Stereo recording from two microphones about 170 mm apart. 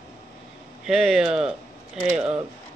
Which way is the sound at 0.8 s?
Centre (ahead or behind).